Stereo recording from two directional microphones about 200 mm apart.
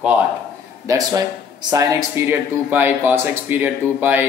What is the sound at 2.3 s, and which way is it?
Speech, 10° right (ahead or behind).